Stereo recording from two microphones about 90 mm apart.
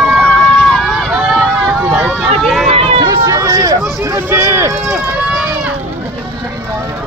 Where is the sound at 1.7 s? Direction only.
15° right (ahead or behind).